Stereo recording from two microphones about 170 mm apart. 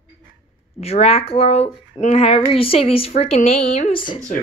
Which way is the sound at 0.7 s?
35° left (ahead or behind).